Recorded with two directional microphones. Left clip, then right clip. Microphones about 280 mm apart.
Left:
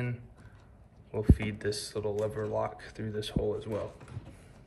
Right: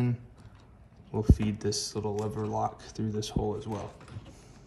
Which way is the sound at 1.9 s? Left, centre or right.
Centre.